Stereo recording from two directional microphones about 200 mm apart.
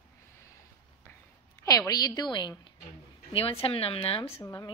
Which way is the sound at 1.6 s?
15° left (ahead or behind).